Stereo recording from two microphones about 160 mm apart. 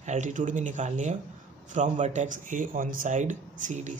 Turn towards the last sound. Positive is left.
turn(degrees=-50)  # may be behind; listen again after turning